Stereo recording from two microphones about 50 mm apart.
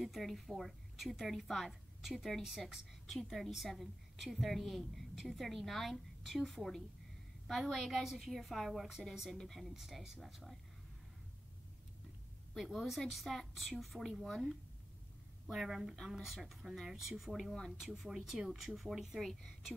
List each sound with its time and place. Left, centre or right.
0.0 s a woman's voice: centre
12.5 s a woman's voice: centre